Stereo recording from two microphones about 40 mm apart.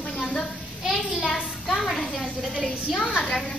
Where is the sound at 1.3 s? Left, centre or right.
Centre.